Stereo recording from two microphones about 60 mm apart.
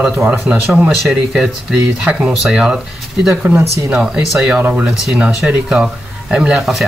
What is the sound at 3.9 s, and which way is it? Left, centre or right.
Speech, centre.